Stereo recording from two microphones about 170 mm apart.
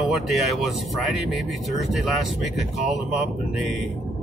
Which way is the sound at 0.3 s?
Centre (ahead or behind).